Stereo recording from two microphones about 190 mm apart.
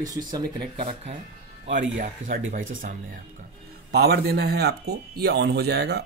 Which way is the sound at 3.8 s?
55° right (ahead or behind).